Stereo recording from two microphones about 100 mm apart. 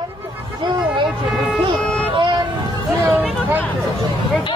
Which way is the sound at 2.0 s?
60° right (ahead or behind).